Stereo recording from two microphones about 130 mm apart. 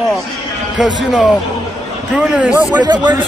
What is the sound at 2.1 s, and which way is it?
Speech, 10° right (ahead or behind).